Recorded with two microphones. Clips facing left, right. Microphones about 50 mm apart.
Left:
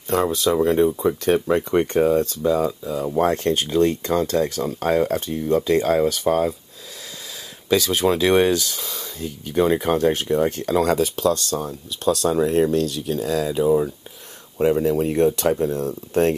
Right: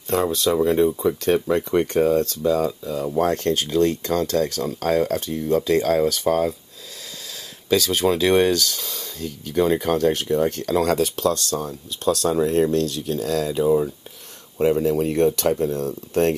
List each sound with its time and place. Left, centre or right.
0.3 s speech: centre
0.7 s speech: centre
1.0 s speech: centre
7.7 s speech: centre
8.8 s a sound: centre
9.2 s speech: left